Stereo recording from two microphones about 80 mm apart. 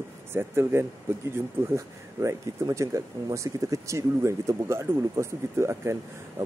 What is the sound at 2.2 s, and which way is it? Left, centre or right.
Speech, right.